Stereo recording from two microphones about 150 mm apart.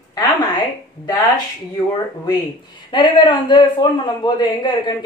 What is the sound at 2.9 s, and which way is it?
A man's voice, 30° left (ahead or behind).